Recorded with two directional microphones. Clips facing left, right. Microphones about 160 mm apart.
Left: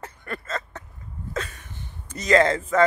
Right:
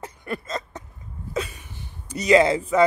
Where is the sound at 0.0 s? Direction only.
15° right (ahead or behind).